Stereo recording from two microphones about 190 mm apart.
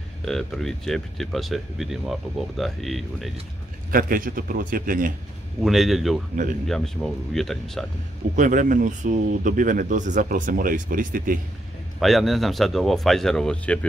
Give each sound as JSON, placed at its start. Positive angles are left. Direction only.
{"t": 0.2, "sound": "speech", "side_deg": 0}
{"t": 3.9, "sound": "speech", "side_deg": -45}
{"t": 5.6, "sound": "speech", "side_deg": 0}
{"t": 8.4, "sound": "speech", "side_deg": -40}
{"t": 12.0, "sound": "speech", "side_deg": 0}